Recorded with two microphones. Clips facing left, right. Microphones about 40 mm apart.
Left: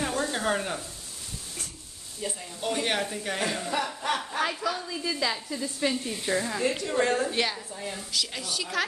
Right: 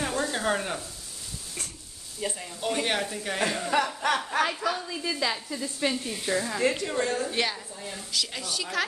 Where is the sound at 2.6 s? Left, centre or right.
Centre.